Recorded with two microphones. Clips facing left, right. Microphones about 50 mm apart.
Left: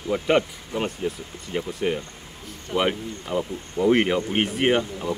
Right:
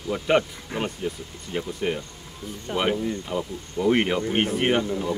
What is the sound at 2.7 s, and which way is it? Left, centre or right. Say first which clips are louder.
Speech: left 2 dB; centre.